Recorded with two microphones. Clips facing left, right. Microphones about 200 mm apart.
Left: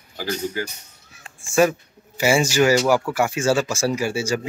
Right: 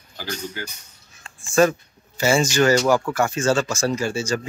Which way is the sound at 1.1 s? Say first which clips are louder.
Even; 10° left (ahead or behind).